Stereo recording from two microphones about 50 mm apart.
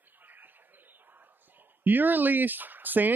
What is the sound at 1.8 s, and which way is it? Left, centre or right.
Speech, right.